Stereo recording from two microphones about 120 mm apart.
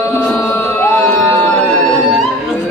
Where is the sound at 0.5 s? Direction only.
20° left (ahead or behind).